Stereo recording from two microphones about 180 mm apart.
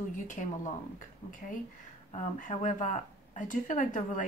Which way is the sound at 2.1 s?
40° left (ahead or behind).